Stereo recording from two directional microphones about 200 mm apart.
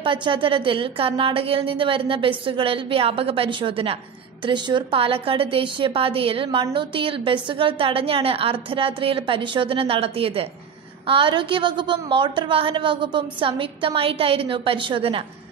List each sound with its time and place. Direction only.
0.0 s a woman's voice: 25° right (ahead or behind)